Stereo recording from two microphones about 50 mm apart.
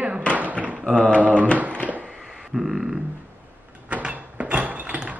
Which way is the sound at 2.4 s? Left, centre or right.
Centre.